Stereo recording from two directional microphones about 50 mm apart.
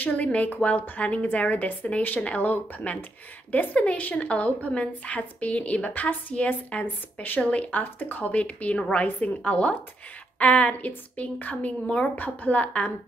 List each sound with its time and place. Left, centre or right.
0.0 s a woman's voice: left